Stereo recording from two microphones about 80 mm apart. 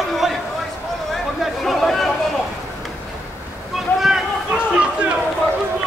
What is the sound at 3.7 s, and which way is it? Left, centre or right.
Boat, centre.